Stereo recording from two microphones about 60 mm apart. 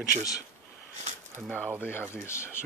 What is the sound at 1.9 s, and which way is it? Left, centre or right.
Speech, left.